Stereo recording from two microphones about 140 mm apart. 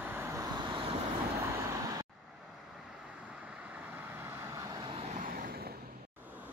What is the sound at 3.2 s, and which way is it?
Vehicle, 10° right (ahead or behind).